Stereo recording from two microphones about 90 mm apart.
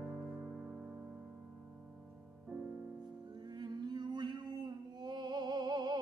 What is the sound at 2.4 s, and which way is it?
Music, 15° right (ahead or behind).